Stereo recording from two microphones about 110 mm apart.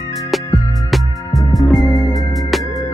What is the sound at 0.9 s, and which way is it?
Music, centre (ahead or behind).